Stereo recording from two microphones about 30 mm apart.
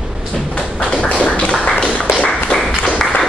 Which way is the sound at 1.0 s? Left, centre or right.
Left.